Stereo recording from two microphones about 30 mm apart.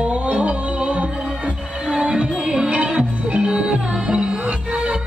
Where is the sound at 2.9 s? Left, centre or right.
Right.